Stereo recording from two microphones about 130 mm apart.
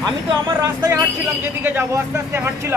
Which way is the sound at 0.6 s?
30° right (ahead or behind).